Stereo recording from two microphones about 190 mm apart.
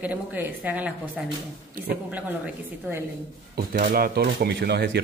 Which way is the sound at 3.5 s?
50° right (ahead or behind).